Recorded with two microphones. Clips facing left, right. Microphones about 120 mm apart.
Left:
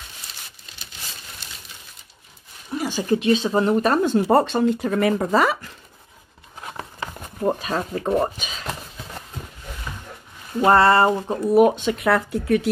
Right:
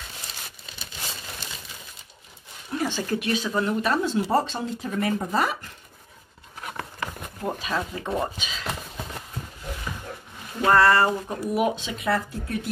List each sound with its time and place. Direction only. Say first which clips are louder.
2.7 s speech: left 4 dB; 10° left (ahead or behind); by 5.6 s 90° left
6.6 s a sound: left 1 dB; 25° left (ahead or behind)
7.4 s speech: left 5 dB; 45° left (ahead or behind)
10.6 s speech: left 3 dB; 25° left (ahead or behind)
11.5 s speech: left 10 dB; 50° left (ahead or behind); by 12.6 s 80° left